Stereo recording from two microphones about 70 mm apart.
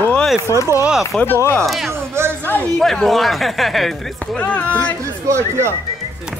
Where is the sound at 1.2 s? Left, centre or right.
Left.